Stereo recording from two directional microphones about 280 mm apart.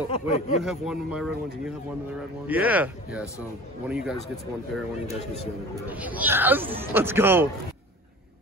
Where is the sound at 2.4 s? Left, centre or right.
Centre.